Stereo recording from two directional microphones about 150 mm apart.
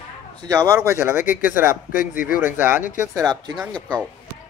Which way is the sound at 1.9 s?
65° left (ahead or behind).